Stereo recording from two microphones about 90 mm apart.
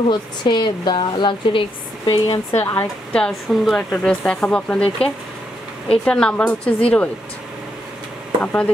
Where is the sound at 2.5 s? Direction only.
25° left (ahead or behind).